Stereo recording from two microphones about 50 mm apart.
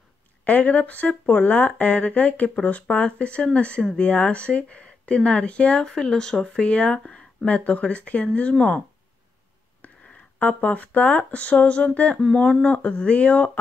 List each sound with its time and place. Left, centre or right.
0.5 s speech: left; by 6.7 s centre
6.7 s speech: left
7.1 s a sound: centre
7.4 s speech: left
9.8 s a sound: left
10.4 s speech: left